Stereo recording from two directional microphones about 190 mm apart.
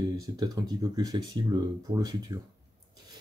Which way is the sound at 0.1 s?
20° right (ahead or behind).